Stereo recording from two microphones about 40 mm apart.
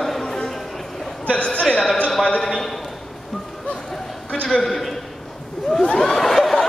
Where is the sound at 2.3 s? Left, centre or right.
Centre.